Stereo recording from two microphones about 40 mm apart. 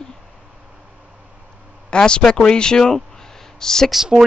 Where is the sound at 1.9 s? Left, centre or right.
Left.